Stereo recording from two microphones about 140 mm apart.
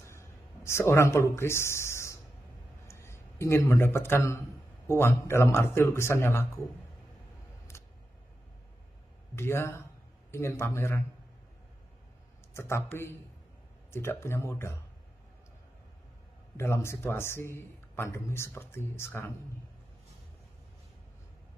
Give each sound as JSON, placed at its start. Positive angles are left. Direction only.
{"t": 0.0, "sound": "a sound", "side_deg": 20}
{"t": 2.9, "sound": "a man's voice", "side_deg": 20}
{"t": 9.3, "sound": "a man's voice", "side_deg": 20}
{"t": 12.5, "sound": "a man's voice", "side_deg": 20}
{"t": 16.5, "sound": "a man's voice", "side_deg": 20}